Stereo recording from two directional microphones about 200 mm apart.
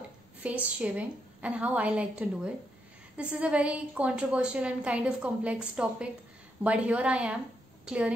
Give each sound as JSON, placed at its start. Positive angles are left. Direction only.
{"t": 0.4, "sound": "a woman's voice", "side_deg": -5}